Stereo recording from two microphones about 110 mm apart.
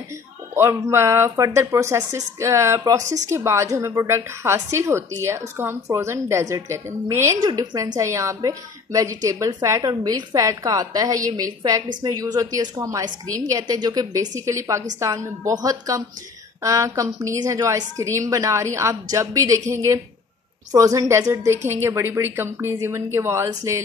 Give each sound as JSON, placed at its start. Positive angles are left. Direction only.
{"t": 0.6, "sound": "a woman's voice", "side_deg": -25}